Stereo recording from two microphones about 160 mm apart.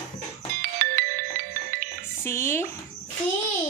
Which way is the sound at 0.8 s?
65° right (ahead or behind).